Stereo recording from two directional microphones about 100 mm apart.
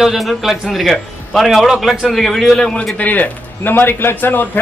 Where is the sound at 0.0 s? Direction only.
Centre (ahead or behind).